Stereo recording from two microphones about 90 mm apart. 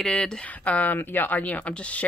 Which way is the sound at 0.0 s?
10° left (ahead or behind).